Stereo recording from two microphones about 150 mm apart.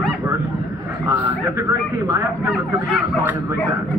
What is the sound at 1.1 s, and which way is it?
Speech, 10° right (ahead or behind).